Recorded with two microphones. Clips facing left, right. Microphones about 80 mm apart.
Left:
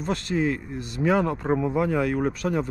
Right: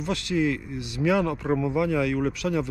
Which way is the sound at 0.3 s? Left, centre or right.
Left.